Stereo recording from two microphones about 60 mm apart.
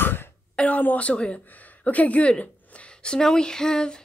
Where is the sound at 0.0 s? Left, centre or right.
Left.